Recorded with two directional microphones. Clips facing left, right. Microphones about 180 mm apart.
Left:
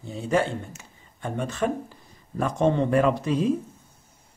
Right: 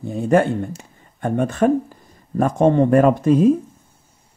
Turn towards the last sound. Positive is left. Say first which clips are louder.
# right 9 dB
turn(degrees=-50)  # may be behind; listen again after turning